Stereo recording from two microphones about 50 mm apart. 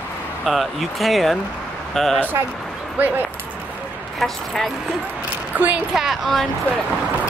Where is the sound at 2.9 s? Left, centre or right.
Right.